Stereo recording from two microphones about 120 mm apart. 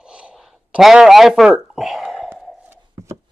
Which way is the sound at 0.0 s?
5° right (ahead or behind).